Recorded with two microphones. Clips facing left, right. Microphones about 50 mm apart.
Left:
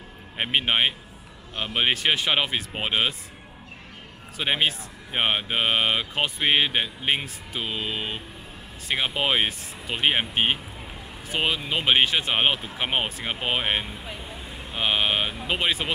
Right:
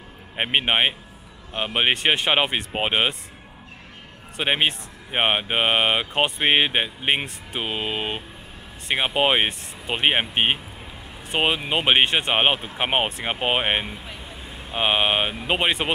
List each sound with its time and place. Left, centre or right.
0.4 s speech: right
4.4 s speech: right
12.4 s speech: right
13.9 s vehicle: centre
14.7 s speech: right